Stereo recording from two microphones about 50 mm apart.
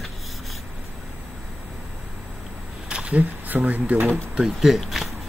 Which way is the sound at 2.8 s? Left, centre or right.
Right.